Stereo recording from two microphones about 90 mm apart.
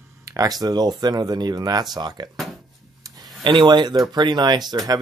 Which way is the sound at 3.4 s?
60° right (ahead or behind).